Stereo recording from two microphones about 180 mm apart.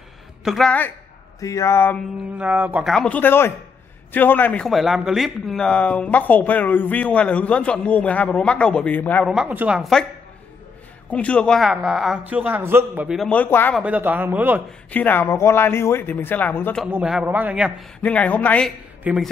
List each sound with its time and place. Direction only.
0.4 s a man's voice: centre (ahead or behind)
2.3 s a man's voice: 10° right (ahead or behind); by 9.3 s 10° left (ahead or behind)
9.3 s a man's voice: 5° right (ahead or behind)
11.1 s a man's voice: 5° left (ahead or behind)
13.7 s a man's voice: 10° right (ahead or behind)
14.9 s a man's voice: 10° left (ahead or behind)
16.8 s a man's voice: 5° right (ahead or behind)
18.0 s a man's voice: 10° left (ahead or behind)
19.1 s a man's voice: 10° right (ahead or behind)